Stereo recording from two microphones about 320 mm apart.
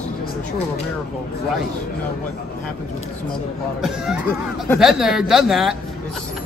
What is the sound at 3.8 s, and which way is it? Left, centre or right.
Speech, centre.